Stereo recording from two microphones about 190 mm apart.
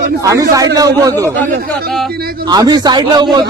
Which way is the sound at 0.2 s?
15° right (ahead or behind).